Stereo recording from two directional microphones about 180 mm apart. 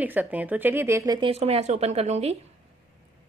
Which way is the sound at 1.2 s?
35° right (ahead or behind).